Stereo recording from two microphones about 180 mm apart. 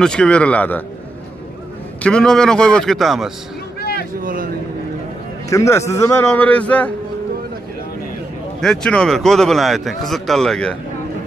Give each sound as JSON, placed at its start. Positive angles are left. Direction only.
{"t": 0.0, "sound": "a man's voice", "side_deg": 5}
{"t": 2.0, "sound": "a man's voice", "side_deg": 5}
{"t": 3.8, "sound": "a sound", "side_deg": 60}
{"t": 4.1, "sound": "speech", "side_deg": -50}
{"t": 5.5, "sound": "a man's voice", "side_deg": 15}
{"t": 8.5, "sound": "a man's voice", "side_deg": 5}